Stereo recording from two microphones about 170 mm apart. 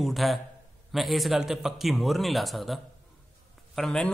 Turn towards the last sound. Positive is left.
turn(degrees=5)  # may be behind; listen again after turning